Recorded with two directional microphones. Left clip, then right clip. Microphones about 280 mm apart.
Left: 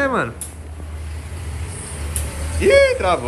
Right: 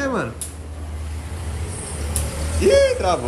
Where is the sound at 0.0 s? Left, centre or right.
Centre.